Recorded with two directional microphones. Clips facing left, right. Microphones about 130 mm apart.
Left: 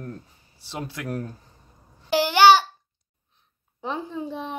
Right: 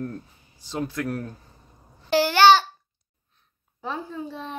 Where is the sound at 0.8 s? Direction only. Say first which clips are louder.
Right 3 dB; 10° left (ahead or behind).